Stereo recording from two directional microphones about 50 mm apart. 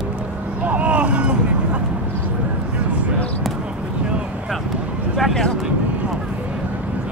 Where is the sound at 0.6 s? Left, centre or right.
Right.